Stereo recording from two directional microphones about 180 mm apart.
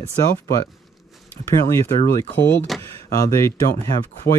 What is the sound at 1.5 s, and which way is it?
Speech, 15° left (ahead or behind).